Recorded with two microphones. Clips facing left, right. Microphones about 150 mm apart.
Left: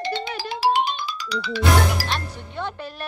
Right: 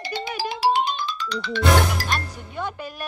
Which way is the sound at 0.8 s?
10° left (ahead or behind).